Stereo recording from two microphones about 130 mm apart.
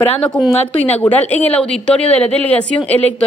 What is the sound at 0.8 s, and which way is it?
Speech, 15° left (ahead or behind).